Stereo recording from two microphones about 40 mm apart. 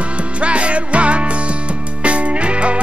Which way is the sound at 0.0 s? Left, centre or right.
Right.